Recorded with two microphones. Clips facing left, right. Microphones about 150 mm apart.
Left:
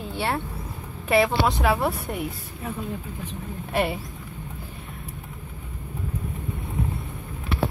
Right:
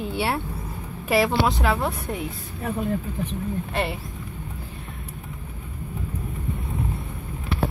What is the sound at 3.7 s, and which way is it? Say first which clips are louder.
Speech: left 5 dB; 5° left (ahead or behind).